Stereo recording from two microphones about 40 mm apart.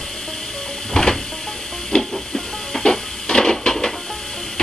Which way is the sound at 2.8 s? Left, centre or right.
Left.